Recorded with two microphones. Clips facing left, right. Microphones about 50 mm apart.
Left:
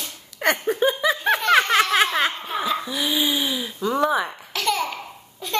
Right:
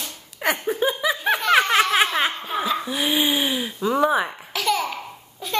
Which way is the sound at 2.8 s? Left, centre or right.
Right.